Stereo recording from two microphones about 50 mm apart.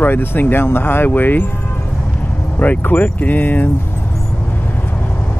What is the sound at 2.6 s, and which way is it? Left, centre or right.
Speech, left.